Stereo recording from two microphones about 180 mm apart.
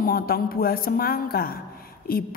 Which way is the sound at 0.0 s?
55° left (ahead or behind).